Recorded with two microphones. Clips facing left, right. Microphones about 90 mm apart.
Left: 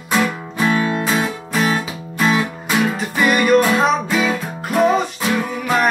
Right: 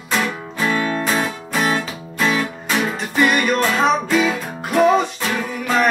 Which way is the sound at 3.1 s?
5° left (ahead or behind).